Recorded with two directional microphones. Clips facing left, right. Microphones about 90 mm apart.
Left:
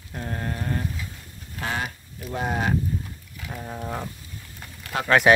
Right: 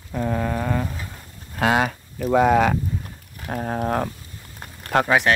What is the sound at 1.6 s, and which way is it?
Speech, 90° right.